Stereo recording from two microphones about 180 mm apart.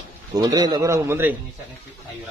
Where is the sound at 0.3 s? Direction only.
20° right (ahead or behind).